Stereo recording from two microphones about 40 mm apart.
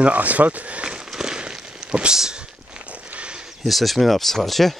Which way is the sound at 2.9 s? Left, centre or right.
Right.